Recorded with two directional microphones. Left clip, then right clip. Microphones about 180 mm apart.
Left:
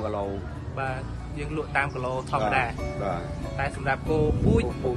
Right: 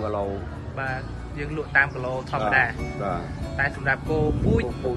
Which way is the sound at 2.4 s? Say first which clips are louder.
Right 6 dB; centre (ahead or behind).